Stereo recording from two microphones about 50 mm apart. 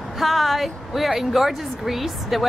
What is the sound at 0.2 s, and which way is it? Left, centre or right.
Speech, centre.